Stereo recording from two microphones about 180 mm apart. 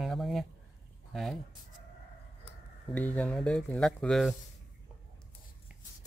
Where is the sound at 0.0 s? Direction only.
Centre (ahead or behind).